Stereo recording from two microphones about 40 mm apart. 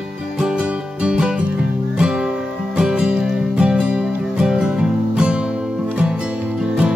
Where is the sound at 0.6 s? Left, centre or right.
Right.